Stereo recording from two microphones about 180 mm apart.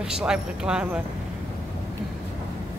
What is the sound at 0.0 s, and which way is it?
Speech, 5° right (ahead or behind).